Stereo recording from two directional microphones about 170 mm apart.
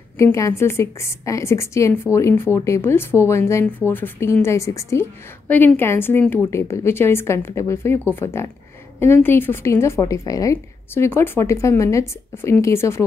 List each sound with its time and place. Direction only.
0.2 s a woman's voice: 15° left (ahead or behind)